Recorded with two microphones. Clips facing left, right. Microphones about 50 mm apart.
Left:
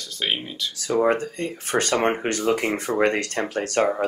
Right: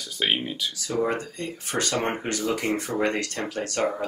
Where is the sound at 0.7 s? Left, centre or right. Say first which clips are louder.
Left 7 dB; left.